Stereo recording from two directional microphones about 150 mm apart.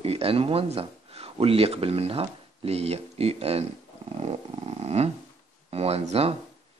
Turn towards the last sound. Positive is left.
turn(degrees=-40)  # may be behind; listen again after turning